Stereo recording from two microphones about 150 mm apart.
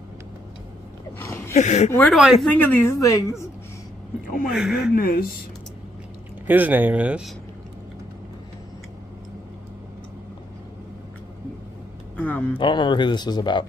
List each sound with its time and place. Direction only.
1.2 s a sound: 20° left (ahead or behind)
1.5 s speech: 50° left (ahead or behind)
1.9 s a woman's voice: 10° left (ahead or behind)
4.5 s speech: 5° right (ahead or behind)
4.9 s speech: 75° left (ahead or behind)
6.4 s speech: 10° right (ahead or behind)
12.2 s a woman's voice: 10° left (ahead or behind)
12.5 s speech: 30° left (ahead or behind)